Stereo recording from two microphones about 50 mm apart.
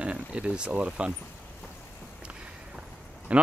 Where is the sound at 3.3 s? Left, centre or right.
Right.